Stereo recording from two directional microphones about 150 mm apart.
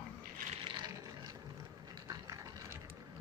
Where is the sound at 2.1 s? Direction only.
20° right (ahead or behind).